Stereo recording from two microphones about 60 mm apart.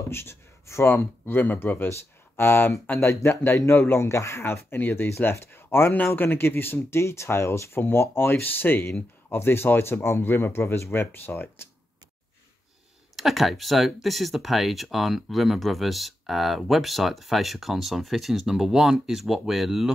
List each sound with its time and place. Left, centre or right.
0.1 s speech: left
13.1 s speech: centre